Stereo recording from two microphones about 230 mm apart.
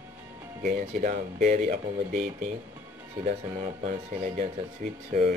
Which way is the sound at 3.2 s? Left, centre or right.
Right.